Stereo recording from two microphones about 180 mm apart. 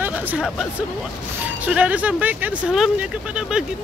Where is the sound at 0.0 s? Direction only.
10° right (ahead or behind).